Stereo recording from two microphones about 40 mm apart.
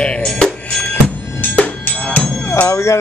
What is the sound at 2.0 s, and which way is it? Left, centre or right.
Music, left.